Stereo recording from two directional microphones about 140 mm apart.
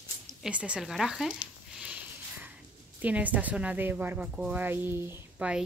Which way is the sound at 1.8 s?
10° right (ahead or behind).